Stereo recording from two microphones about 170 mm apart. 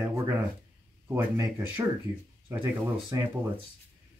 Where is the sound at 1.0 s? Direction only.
15° right (ahead or behind).